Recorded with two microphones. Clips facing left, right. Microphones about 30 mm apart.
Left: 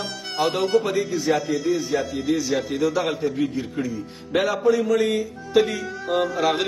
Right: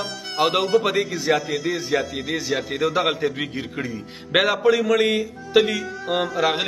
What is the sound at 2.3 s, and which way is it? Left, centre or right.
Speech, right.